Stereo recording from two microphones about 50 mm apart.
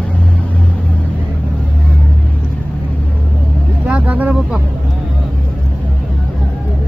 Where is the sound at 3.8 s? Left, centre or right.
Right.